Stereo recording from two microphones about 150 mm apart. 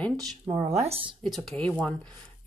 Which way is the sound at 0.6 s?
45° right (ahead or behind).